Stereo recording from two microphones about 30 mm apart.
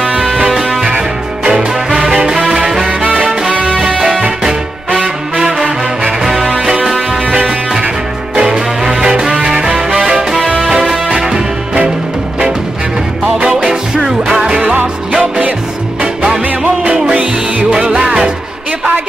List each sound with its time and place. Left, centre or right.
0.7 s music: right
2.9 s music: right
4.9 s music: right
6.2 s music: centre
8.4 s music: centre
13.7 s music: centre
14.6 s music: right
17.8 s music: right